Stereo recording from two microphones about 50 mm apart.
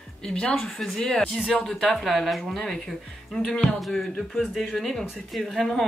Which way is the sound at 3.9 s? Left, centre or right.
Centre.